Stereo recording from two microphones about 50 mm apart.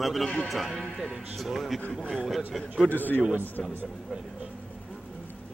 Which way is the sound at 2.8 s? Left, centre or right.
Left.